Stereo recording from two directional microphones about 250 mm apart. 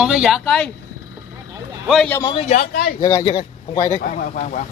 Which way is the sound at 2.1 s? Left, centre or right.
Centre.